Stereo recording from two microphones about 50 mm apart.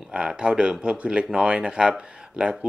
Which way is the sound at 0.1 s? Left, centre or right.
Centre.